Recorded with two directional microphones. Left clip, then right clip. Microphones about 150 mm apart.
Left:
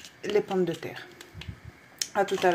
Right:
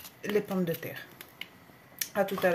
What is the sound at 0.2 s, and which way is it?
Speech, 5° left (ahead or behind).